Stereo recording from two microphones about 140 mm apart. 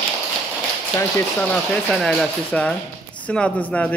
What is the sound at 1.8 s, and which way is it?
A man's voice, 5° left (ahead or behind).